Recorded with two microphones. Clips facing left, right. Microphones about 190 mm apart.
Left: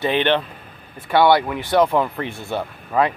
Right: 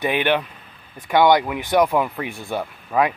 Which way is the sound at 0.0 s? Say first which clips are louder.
Left 1 dB; 10° right (ahead or behind).